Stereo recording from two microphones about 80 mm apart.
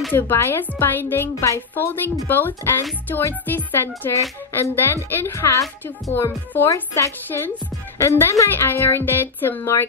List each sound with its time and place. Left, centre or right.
0.1 s a woman's voice: left
6.1 s speech: left
6.7 s a woman's voice: left